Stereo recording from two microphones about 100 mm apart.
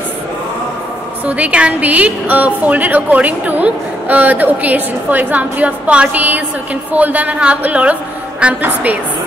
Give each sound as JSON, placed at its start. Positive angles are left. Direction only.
{"t": 1.2, "sound": "a woman's voice", "side_deg": -15}